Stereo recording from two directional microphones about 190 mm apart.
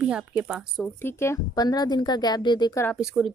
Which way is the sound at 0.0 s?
5° right (ahead or behind).